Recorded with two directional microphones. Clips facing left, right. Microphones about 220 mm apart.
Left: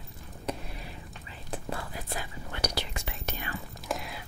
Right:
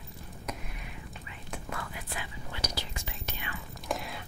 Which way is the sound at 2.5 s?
65° left (ahead or behind).